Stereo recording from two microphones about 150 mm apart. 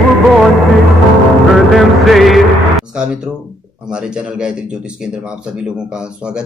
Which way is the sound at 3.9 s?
5° right (ahead or behind).